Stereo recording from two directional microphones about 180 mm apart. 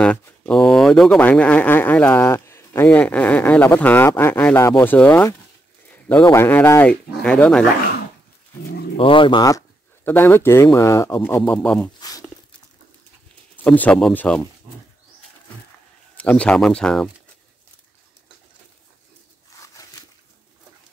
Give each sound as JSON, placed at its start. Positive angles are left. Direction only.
{"t": 0.0, "sound": "speech", "side_deg": 5}
{"t": 5.9, "sound": "a sound", "side_deg": 10}
{"t": 6.2, "sound": "speech", "side_deg": 15}
{"t": 8.9, "sound": "speech", "side_deg": 30}
{"t": 11.4, "sound": "speech", "side_deg": 5}
{"t": 12.0, "sound": "a sound", "side_deg": 20}
{"t": 13.7, "sound": "speech", "side_deg": 5}
{"t": 16.2, "sound": "speech", "side_deg": 5}
{"t": 19.6, "sound": "a sound", "side_deg": 20}